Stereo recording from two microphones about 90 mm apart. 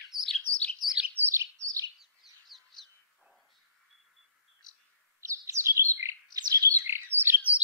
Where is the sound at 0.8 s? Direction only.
10° right (ahead or behind).